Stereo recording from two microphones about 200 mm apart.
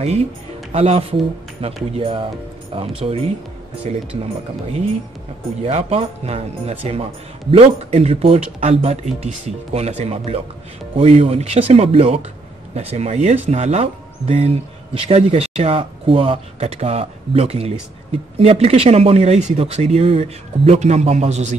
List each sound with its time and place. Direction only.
0.7 s speech: 30° right (ahead or behind)
5.6 s speech: 35° right (ahead or behind)